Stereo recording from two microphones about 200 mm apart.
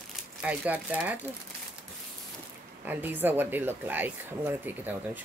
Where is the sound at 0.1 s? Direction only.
5° right (ahead or behind).